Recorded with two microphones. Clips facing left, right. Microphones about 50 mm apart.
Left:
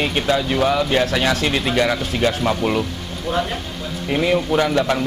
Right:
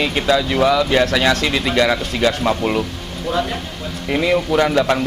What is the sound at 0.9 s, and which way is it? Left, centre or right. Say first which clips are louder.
A man's voice: right 3 dB; right.